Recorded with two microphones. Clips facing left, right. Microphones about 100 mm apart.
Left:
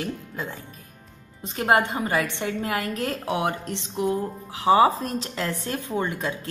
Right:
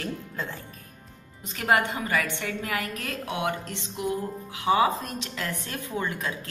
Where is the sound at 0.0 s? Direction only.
10° left (ahead or behind).